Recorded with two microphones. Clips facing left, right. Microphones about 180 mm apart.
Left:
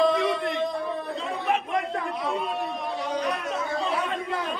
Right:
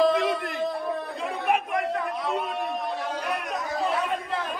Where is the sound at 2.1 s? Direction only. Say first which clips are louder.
Even; centre (ahead or behind).